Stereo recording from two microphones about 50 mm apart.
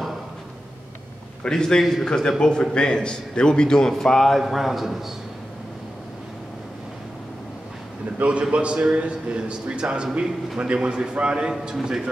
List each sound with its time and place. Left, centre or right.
1.4 s a man's voice: centre
4.4 s a man's voice: centre
8.2 s a man's voice: right